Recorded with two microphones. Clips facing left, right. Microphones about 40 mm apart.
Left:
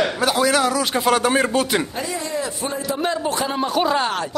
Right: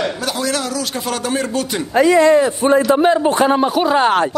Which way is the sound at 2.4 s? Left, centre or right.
Right.